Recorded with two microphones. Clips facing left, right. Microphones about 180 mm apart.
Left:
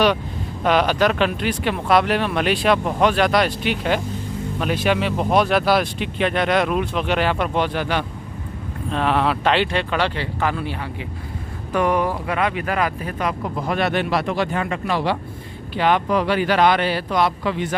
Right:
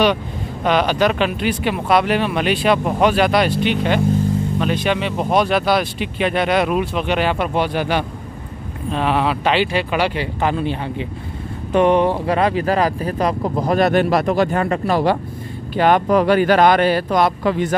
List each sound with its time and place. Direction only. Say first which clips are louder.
0.7 s speech: right 1 dB; centre (ahead or behind)
10.4 s speech: right 4 dB; 25° right (ahead or behind); by 17.7 s 45° right (ahead or behind)